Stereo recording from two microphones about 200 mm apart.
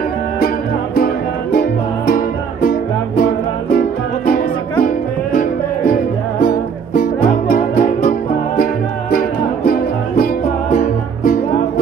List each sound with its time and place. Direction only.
0.9 s music: 50° left (ahead or behind)
4.8 s music: 40° left (ahead or behind)
10.7 s music: 40° left (ahead or behind)